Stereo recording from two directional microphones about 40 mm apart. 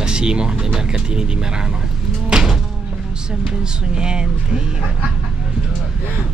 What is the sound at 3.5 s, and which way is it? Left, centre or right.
Speech, right.